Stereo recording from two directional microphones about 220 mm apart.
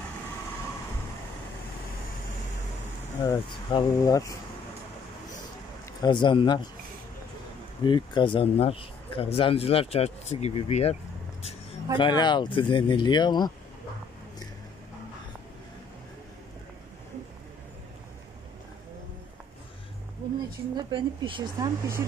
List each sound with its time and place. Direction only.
3.2 s speech: 20° left (ahead or behind)
5.9 s speech: 20° left (ahead or behind)
7.8 s speech: 20° left (ahead or behind)
12.0 s speech: 20° left (ahead or behind)
20.7 s a woman's voice: 20° right (ahead or behind)